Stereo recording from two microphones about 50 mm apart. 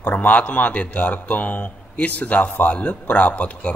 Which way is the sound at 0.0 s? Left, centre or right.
Left.